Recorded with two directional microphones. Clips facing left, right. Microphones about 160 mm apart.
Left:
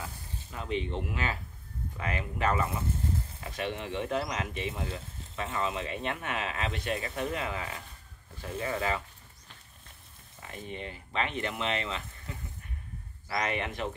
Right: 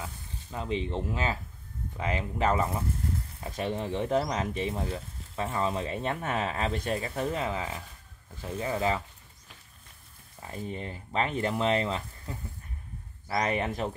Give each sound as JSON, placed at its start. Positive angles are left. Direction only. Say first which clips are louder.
{"t": 0.0, "sound": "sizzle", "louder": "right 1 dB", "side_deg": -25}
{"t": 2.0, "sound": "speech", "louder": "right 3 dB", "side_deg": -25}
{"t": 10.4, "sound": "speech", "louder": "right 3 dB", "side_deg": -35}
{"t": 13.3, "sound": "speech", "louder": "right 3 dB", "side_deg": -35}